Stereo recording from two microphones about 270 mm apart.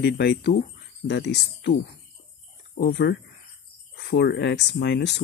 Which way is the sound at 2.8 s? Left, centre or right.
Left.